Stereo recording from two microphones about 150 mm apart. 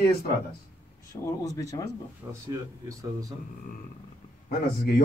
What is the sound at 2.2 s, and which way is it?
Speech, 20° right (ahead or behind).